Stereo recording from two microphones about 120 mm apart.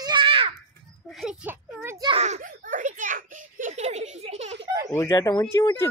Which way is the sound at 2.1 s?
70° right (ahead or behind).